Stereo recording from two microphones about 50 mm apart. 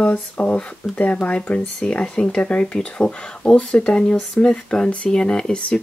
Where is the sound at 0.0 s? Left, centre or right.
Left.